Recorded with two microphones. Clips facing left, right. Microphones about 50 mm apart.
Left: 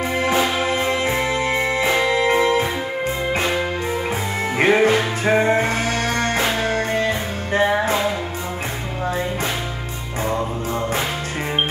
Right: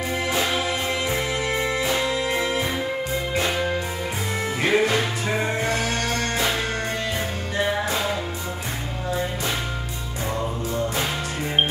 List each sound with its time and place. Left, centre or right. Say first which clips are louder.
0.2 s music: left 5 dB; left
4.6 s music: left 5 dB; left